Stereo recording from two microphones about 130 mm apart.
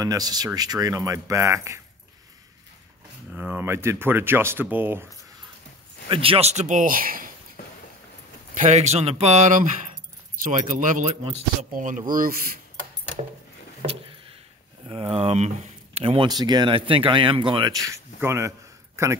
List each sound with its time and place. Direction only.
0.0 s speech: 30° right (ahead or behind)
3.3 s speech: 15° right (ahead or behind)
6.0 s speech: 45° right (ahead or behind)
6.5 s speech: 70° right (ahead or behind); by 7.2 s 90° right
8.5 s speech: 60° right (ahead or behind)
10.4 s speech: 75° right (ahead or behind); by 12.4 s 90° right
14.9 s speech: 45° right (ahead or behind)
16.3 s speech: 30° right (ahead or behind)
17.7 s speech: 25° right (ahead or behind)